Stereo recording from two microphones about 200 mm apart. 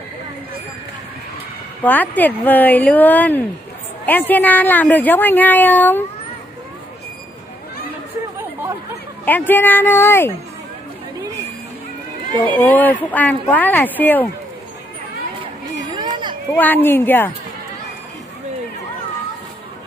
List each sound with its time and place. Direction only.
1.8 s speech: 10° left (ahead or behind)
9.5 s speech: 10° left (ahead or behind)
12.4 s speech: 10° left (ahead or behind)
15.9 s a sound: 25° right (ahead or behind)
16.5 s speech: 10° left (ahead or behind)